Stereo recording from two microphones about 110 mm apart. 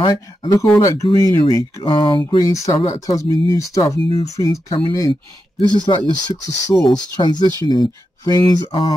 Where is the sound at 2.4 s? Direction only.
30° left (ahead or behind).